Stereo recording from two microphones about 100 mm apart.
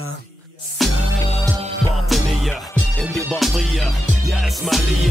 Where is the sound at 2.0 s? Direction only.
Centre (ahead or behind).